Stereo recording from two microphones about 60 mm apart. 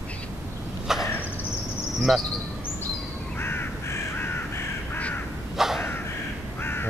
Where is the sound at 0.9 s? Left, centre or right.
Centre.